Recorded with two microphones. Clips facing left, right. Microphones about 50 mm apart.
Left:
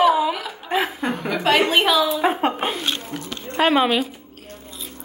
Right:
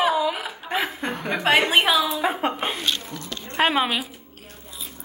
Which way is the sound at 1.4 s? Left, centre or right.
Centre.